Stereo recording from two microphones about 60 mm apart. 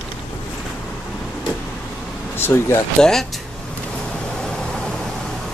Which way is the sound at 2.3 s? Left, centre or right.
Left.